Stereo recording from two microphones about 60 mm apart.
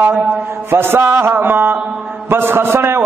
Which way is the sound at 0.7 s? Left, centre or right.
Right.